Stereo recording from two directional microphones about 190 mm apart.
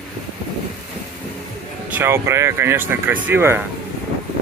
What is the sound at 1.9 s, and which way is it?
Speech, 15° right (ahead or behind).